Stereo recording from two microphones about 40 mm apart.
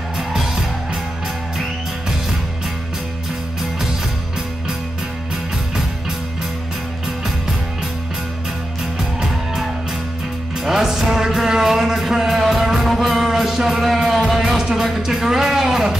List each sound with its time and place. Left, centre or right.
0.2 s music: centre
8.9 s music: centre
14.6 s music: centre
15.0 s speech: centre